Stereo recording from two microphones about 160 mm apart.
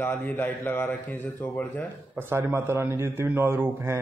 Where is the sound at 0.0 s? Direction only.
10° left (ahead or behind).